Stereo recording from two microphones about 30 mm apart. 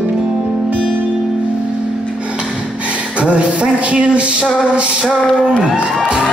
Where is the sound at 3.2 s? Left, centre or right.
Right.